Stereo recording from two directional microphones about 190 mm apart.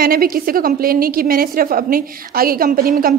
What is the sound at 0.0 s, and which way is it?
A woman's voice, 50° right (ahead or behind).